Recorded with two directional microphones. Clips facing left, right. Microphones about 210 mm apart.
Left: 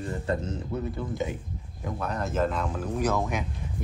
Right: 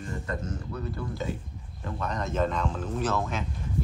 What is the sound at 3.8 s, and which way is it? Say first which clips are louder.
Walk: right 4 dB; 15° left (ahead or behind).